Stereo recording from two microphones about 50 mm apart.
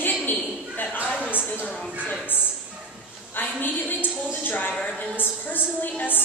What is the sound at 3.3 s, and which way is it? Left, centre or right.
A woman's voice, left.